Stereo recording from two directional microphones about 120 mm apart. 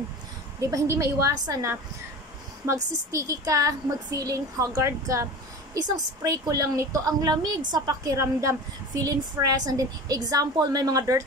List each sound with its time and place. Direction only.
0.6 s a woman's voice: 25° right (ahead or behind)